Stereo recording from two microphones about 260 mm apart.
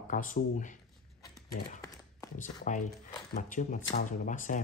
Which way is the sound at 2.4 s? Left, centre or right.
Left.